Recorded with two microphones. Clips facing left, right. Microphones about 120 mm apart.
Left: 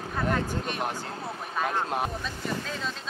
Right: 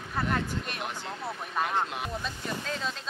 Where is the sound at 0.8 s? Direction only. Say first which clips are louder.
Left 2 dB; 40° left (ahead or behind).